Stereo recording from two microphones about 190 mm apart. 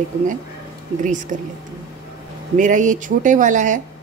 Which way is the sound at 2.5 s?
40° right (ahead or behind).